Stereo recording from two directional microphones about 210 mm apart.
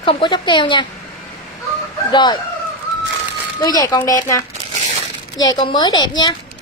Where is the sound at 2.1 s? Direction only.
20° left (ahead or behind).